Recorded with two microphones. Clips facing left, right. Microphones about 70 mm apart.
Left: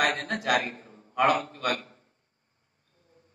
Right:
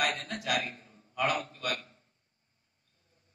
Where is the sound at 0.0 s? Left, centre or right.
Left.